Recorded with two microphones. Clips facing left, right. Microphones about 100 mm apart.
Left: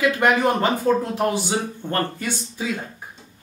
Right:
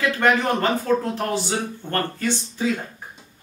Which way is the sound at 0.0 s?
15° left (ahead or behind).